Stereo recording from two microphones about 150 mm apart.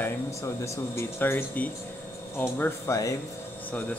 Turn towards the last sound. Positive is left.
turn(degrees=20)  # may be behind; listen again after turning